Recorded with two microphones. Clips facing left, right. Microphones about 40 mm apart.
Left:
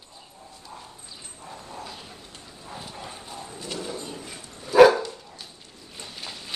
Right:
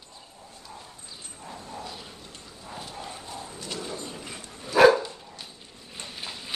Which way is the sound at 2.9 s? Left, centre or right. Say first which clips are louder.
Even; centre.